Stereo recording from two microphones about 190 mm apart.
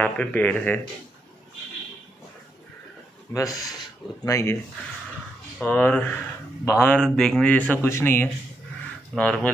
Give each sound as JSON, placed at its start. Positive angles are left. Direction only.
{"t": 0.0, "sound": "a man's voice", "side_deg": 10}
{"t": 3.3, "sound": "a man's voice", "side_deg": 20}
{"t": 5.6, "sound": "a man's voice", "side_deg": 10}